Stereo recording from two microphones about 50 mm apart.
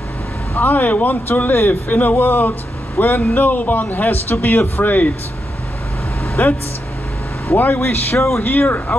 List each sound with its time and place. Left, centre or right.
0.6 s speech: left
6.4 s a man's voice: left
8.2 s speech: left
8.5 s speech: left